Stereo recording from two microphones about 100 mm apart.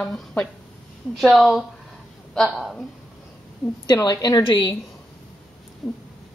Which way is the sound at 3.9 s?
35° left (ahead or behind).